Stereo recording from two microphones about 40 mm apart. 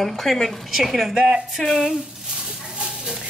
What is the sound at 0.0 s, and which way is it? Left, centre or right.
A woman's voice, centre.